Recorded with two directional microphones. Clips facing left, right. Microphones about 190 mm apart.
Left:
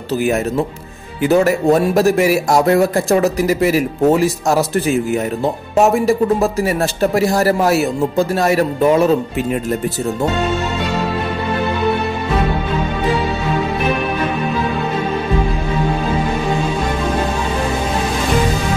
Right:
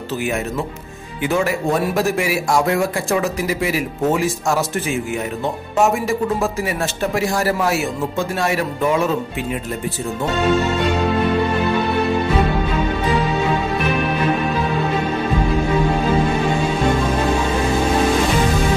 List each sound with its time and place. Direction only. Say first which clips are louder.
1.2 s speech: left 6 dB; 40° left (ahead or behind)